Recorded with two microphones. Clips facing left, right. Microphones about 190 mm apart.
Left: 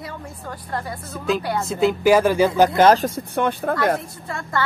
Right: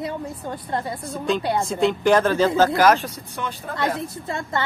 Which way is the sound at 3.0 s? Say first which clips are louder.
Left 9 dB; 55° left (ahead or behind).